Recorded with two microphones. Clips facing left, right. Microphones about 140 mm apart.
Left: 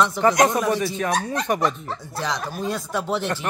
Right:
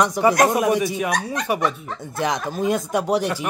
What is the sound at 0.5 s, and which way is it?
A man's voice, 15° right (ahead or behind).